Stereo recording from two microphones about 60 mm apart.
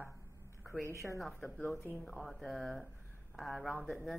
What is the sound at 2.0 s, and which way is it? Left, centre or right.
Speech, centre.